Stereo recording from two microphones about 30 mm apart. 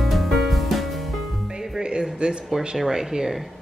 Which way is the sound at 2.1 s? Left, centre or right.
Right.